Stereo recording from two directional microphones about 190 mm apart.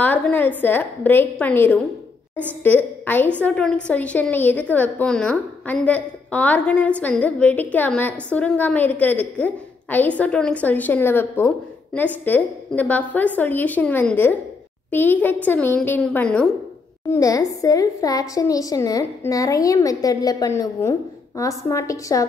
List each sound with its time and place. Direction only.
0.0 s a woman's voice: 10° left (ahead or behind)